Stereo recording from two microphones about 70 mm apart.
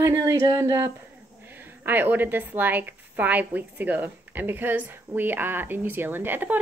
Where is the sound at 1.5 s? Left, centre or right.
Right.